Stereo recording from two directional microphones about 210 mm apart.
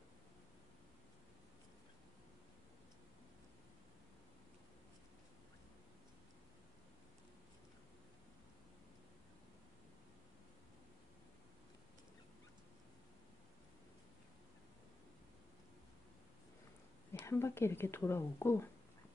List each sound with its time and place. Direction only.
17.1 s speech: 10° left (ahead or behind)